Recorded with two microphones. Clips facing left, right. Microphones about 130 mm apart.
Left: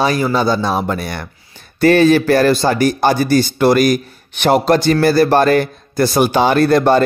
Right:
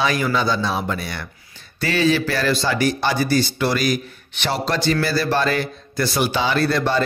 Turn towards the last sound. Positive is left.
turn(degrees=50)  # may be behind; listen again after turning